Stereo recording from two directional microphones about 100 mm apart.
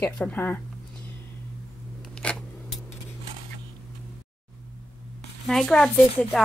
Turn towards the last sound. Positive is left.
turn(degrees=5)  # may be behind; listen again after turning